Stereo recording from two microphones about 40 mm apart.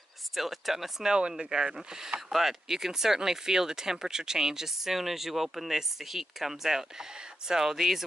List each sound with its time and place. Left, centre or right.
0.4 s speech: centre
1.4 s speech: centre
2.3 s speech: centre